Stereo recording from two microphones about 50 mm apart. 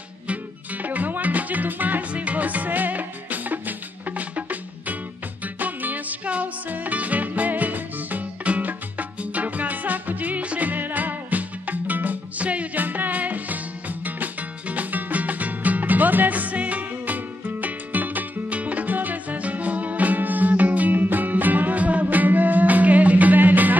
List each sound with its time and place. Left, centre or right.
0.8 s music: right